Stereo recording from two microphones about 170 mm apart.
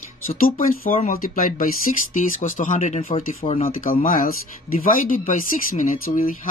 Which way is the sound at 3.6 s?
50° left (ahead or behind).